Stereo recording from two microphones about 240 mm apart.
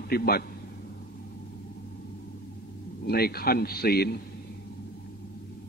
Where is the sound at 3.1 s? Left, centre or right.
Left.